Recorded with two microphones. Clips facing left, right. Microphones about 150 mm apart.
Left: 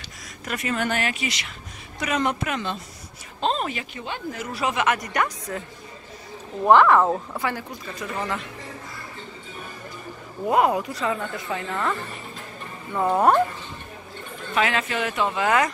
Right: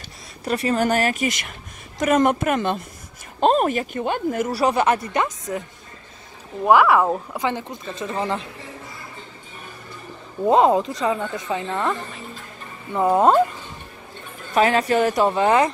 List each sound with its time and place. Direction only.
0.5 s speech: 35° right (ahead or behind); by 4.5 s 50° right (ahead or behind)
4.5 s speech: 35° right (ahead or behind)
6.6 s speech: 5° right (ahead or behind)
7.4 s speech: 25° right (ahead or behind)
10.4 s speech: 25° right (ahead or behind)
14.5 s speech: 40° right (ahead or behind)